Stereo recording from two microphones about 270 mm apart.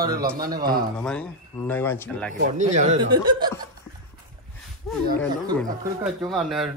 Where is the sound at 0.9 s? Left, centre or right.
Centre.